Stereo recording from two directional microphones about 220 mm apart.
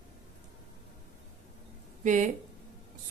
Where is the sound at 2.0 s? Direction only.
35° right (ahead or behind).